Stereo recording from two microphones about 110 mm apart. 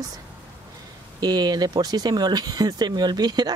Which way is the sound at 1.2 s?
40° right (ahead or behind).